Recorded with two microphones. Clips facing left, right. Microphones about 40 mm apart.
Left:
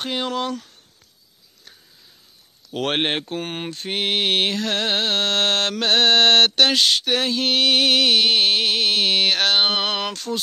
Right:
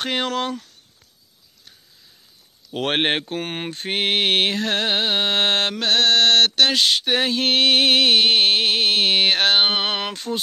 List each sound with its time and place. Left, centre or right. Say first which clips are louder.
0.0 s speech: right 1 dB; right
2.8 s music: right 1 dB; right
5.8 s mantra: left 2 dB; centre
7.2 s music: right 2 dB; right